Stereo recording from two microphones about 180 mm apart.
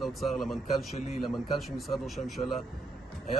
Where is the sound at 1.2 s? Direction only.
Centre (ahead or behind).